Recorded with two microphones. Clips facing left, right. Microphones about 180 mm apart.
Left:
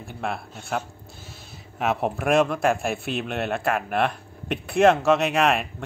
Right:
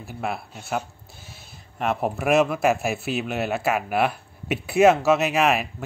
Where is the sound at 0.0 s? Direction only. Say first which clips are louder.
Right 1 dB; 5° right (ahead or behind).